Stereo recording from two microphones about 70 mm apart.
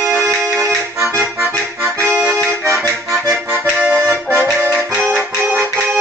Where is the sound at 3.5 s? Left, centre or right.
Right.